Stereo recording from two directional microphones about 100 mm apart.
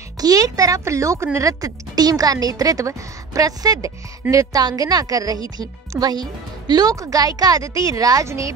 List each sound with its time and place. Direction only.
0.2 s speech: 40° right (ahead or behind)